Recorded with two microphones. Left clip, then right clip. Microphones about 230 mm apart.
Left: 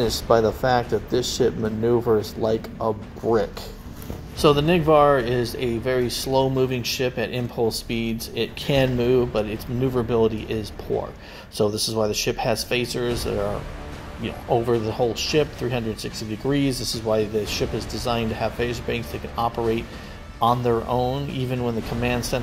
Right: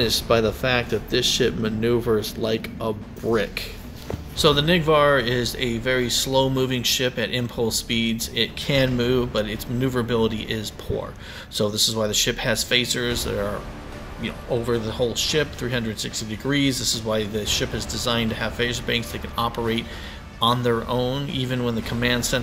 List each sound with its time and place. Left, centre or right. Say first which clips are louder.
0.6 s speech: left 2 dB; right
4.4 s speech: even; centre